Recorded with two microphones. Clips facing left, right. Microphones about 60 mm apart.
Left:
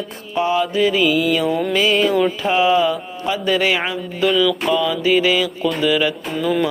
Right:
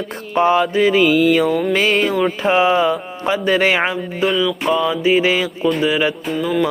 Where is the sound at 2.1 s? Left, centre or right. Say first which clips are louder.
Right 1 dB; right.